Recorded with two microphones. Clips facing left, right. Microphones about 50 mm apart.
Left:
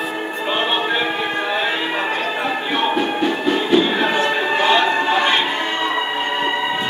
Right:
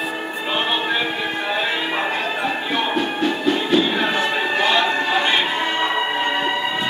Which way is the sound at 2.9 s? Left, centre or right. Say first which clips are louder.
Left 2 dB; centre.